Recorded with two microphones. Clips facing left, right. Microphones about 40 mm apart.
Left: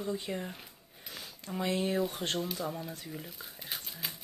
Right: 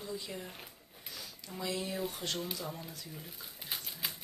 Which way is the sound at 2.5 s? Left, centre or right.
Centre.